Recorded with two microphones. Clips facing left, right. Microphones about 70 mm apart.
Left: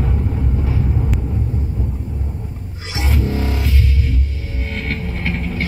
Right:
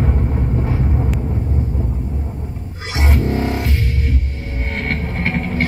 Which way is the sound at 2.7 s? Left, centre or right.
Right.